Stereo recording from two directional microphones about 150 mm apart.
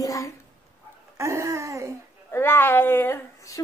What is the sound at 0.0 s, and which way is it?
Babbling, 20° left (ahead or behind).